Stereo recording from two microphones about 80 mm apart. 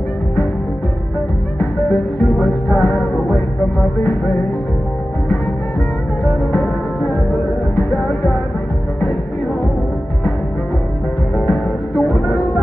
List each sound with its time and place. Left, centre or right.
1.6 s music: centre
6.5 s music: left
11.4 s music: centre